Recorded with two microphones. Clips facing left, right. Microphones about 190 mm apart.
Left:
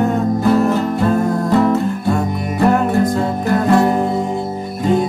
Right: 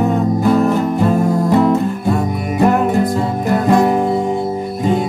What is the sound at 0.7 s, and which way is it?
Music, 15° right (ahead or behind).